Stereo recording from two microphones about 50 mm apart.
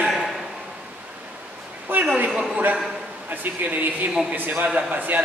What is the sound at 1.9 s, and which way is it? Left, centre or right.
Speech, right.